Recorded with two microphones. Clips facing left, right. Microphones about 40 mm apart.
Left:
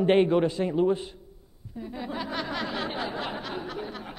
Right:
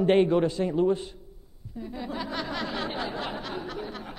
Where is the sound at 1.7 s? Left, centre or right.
Centre.